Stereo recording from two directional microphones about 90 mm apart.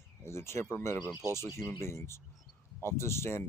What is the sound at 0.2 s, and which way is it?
Speech, 30° left (ahead or behind).